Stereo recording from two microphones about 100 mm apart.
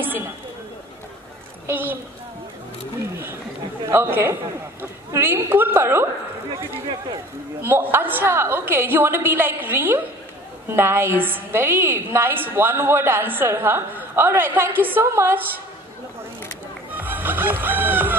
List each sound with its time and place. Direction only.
1.7 s a woman's voice: 20° right (ahead or behind)
3.0 s a woman's voice: 25° right (ahead or behind)
7.6 s a woman's voice: 25° right (ahead or behind)
16.9 s music: 20° right (ahead or behind)